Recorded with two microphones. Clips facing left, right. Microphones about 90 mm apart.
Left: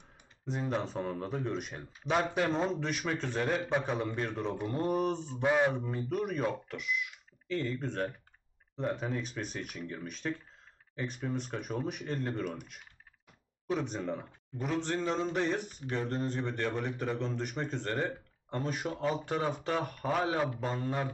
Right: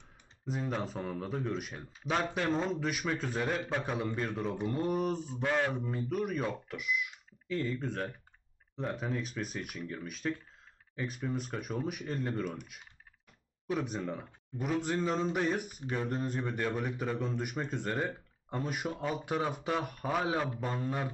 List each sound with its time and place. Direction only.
0.5 s speech: centre (ahead or behind)
5.4 s a man's voice: 15° left (ahead or behind)
5.7 s speech: centre (ahead or behind)
17.1 s speech: centre (ahead or behind)
17.4 s speech: 10° right (ahead or behind)